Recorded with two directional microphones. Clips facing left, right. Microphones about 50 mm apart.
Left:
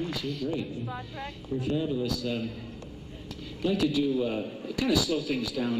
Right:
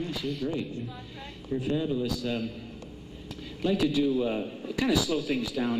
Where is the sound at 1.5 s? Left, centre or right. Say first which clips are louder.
Right 1 dB; right.